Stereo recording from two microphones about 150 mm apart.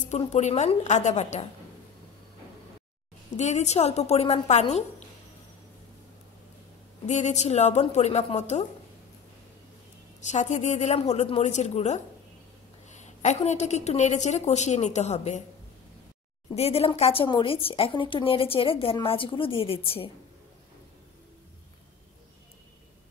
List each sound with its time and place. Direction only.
0.1 s a woman's voice: 50° left (ahead or behind)
3.3 s a woman's voice: 50° left (ahead or behind)
7.1 s a woman's voice: 50° left (ahead or behind)
10.2 s a woman's voice: 50° left (ahead or behind)
16.5 s a woman's voice: 40° left (ahead or behind)